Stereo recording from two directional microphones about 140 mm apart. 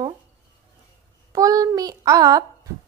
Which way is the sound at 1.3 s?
25° right (ahead or behind).